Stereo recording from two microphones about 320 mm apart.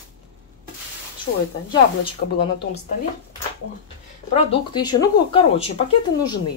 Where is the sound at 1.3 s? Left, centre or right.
Left.